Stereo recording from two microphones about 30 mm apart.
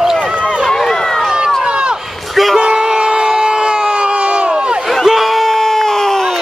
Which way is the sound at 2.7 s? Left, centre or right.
Right.